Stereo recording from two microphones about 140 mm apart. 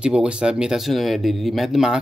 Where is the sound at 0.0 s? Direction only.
5° right (ahead or behind).